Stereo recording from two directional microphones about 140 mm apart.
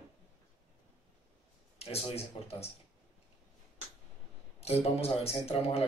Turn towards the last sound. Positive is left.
turn(degrees=45)  # may be behind; listen again after turning